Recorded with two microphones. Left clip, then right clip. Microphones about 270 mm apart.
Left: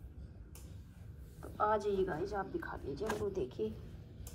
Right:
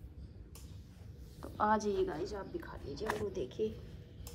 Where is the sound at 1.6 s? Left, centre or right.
Centre.